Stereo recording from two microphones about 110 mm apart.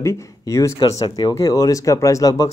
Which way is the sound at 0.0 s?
25° left (ahead or behind).